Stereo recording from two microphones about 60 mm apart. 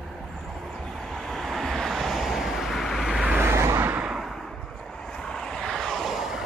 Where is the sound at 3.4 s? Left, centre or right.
Right.